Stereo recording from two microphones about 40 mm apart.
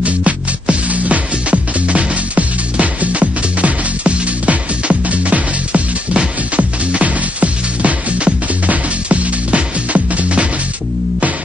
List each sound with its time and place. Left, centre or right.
0.0 s music: right